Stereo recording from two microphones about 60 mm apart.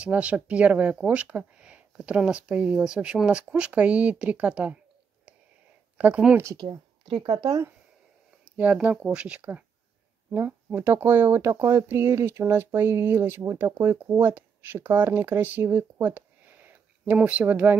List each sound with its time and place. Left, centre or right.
0.0 s speech: right
5.9 s speech: right
8.9 s speech: centre
10.3 s speech: right
11.4 s speech: right
13.8 s speech: right